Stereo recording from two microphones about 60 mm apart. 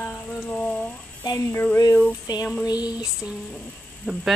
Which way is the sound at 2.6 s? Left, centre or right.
Left.